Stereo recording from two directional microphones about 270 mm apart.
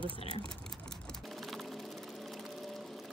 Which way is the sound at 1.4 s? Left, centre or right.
Centre.